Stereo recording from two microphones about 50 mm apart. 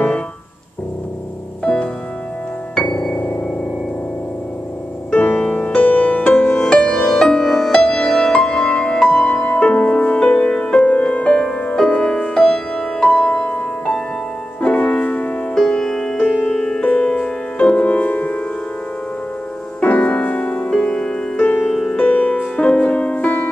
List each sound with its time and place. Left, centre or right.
1.6 s music: left
5.1 s music: left
6.5 s music: centre
15.5 s music: centre
16.8 s music: left
19.8 s music: left
20.7 s music: centre
21.6 s music: centre
21.9 s music: left